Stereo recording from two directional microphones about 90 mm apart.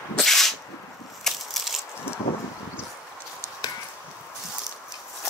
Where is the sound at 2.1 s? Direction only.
25° left (ahead or behind).